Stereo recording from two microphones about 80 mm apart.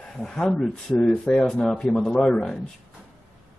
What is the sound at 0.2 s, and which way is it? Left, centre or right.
Speech, centre.